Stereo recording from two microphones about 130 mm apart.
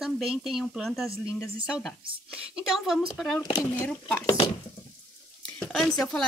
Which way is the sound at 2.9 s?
Centre (ahead or behind).